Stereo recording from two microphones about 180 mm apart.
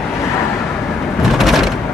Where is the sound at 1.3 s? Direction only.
Centre (ahead or behind).